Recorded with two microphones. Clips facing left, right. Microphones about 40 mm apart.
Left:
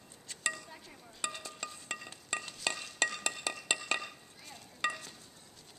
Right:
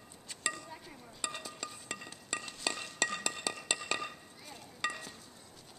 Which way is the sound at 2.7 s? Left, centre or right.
Centre.